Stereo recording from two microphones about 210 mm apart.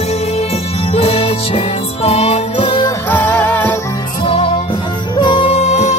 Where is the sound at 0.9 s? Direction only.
30° left (ahead or behind).